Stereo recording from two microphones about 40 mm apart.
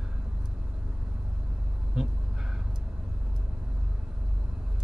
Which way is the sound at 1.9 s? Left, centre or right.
Centre.